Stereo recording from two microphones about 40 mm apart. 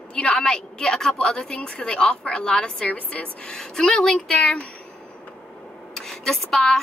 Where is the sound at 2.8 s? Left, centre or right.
Left.